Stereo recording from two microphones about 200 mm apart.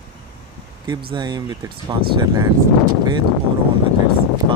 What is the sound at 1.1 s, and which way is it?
Speech, 20° right (ahead or behind).